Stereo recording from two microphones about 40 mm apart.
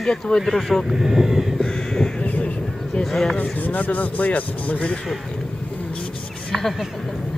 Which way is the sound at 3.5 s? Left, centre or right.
Left.